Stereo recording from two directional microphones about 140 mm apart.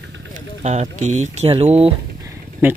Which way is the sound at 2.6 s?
15° right (ahead or behind).